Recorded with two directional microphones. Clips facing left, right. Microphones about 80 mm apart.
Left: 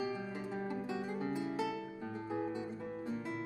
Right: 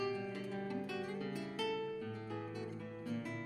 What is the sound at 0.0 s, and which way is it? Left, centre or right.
Music, left.